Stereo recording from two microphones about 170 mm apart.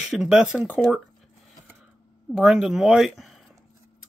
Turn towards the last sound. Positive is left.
turn(degrees=0)  # may be behind; listen again after turning